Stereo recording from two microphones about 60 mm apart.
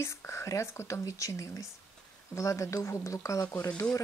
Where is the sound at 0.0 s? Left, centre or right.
Left.